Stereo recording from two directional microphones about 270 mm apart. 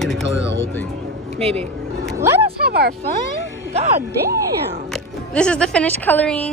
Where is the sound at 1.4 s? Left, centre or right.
Right.